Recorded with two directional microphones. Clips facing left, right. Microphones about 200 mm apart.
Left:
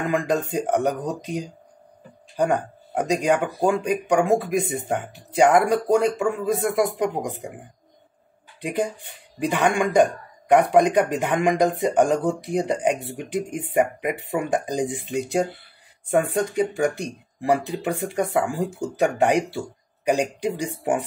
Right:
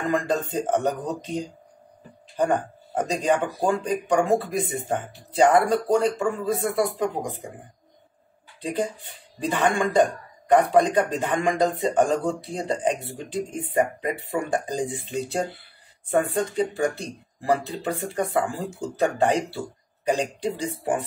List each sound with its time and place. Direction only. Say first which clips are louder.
0.0 s speech: left 1 dB; 10° left (ahead or behind)
3.0 s speech: left 2 dB; 15° left (ahead or behind)
8.5 s speech: left 2 dB; 15° left (ahead or behind)